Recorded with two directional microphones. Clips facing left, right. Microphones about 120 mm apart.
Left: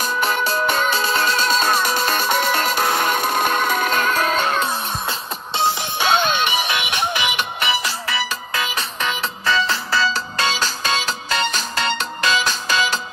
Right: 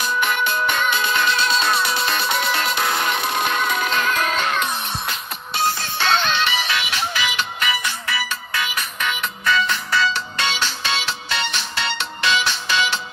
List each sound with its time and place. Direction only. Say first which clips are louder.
0.0 s music: left 1 dB; 35° left (ahead or behind)
5.6 s music: left 2 dB; 20° left (ahead or behind); by 13.0 s 40° left (ahead or behind)